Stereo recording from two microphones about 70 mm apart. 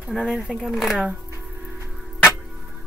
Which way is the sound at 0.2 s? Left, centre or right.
Centre.